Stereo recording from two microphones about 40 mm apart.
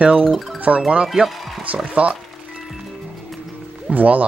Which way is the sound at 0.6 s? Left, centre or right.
Right.